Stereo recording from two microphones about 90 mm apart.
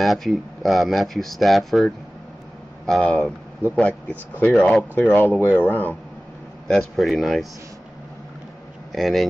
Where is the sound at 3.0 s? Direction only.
10° left (ahead or behind).